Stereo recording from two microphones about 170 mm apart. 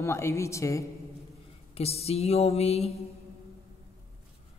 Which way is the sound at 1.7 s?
35° left (ahead or behind).